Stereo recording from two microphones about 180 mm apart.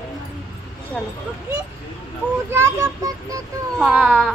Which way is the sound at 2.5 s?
15° right (ahead or behind).